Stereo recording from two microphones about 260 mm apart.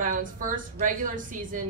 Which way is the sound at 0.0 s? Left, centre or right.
Right.